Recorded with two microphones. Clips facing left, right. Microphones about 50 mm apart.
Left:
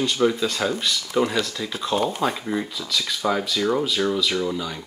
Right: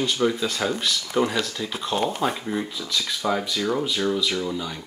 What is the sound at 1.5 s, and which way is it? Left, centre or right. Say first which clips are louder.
Speech: left 2 dB; centre.